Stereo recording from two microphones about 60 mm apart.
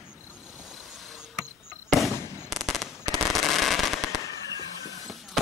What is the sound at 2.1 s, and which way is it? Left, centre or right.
Fireworks, left.